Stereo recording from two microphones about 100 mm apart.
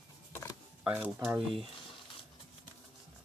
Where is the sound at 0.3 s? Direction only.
30° left (ahead or behind).